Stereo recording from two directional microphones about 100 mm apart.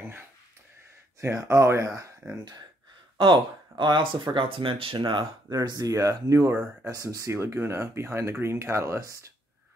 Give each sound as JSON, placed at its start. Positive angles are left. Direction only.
{"t": 1.2, "sound": "speech", "side_deg": -30}
{"t": 3.2, "sound": "speech", "side_deg": -50}
{"t": 5.5, "sound": "speech", "side_deg": -40}